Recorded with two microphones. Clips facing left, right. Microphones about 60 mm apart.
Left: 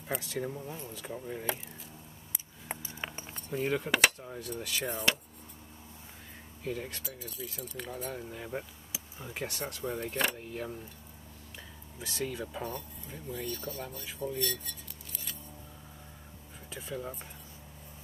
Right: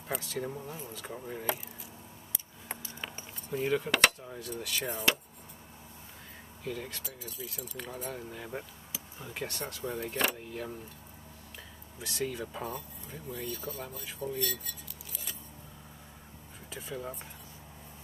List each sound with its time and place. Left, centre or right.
0.1 s speech: centre
0.7 s speech: centre
2.7 s keys jangling: centre
3.4 s speech: centre
6.6 s speech: centre
12.0 s speech: centre
16.7 s speech: centre